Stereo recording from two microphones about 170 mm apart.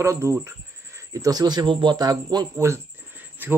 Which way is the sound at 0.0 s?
15° right (ahead or behind).